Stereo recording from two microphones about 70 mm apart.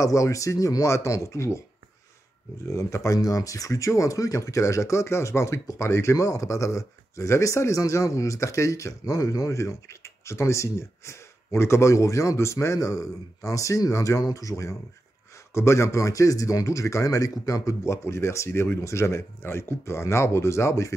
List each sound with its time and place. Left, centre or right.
0.0 s speech: left
2.6 s speech: left